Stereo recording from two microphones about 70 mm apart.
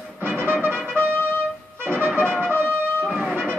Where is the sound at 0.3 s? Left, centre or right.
Right.